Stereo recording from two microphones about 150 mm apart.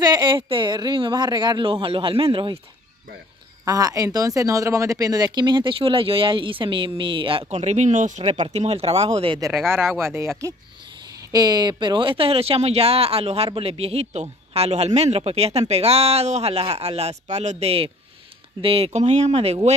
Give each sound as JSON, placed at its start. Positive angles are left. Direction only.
{"t": 0.0, "sound": "speech", "side_deg": -30}
{"t": 3.6, "sound": "speech", "side_deg": -25}
{"t": 9.9, "sound": "speech", "side_deg": -15}
{"t": 11.3, "sound": "speech", "side_deg": -25}